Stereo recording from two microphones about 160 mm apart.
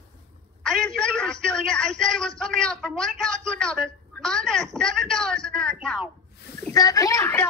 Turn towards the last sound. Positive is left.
turn(degrees=20)  # may be behind; listen again after turning